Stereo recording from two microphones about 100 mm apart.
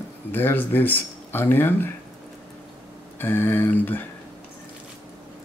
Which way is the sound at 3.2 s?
20° left (ahead or behind).